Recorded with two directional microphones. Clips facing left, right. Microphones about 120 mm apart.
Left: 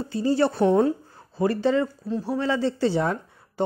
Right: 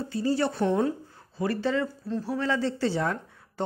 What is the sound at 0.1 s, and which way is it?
Speech, 25° left (ahead or behind).